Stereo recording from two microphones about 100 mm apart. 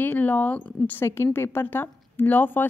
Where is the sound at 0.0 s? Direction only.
15° left (ahead or behind).